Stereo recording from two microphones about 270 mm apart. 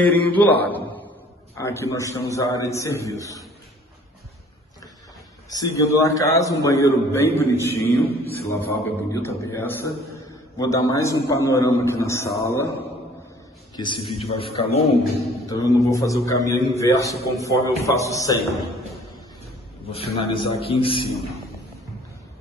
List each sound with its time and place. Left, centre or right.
0.1 s a man's voice: centre
5.5 s a man's voice: centre
13.7 s a man's voice: centre
19.9 s a man's voice: left